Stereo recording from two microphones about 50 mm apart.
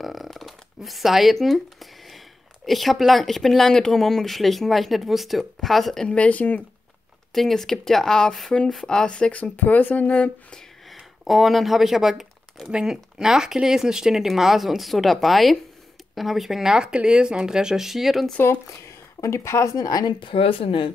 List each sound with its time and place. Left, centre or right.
0.0 s speech: centre
6.0 s speech: left
7.3 s speech: centre; by 10.3 s left
11.2 s speech: centre
18.9 s a sound: left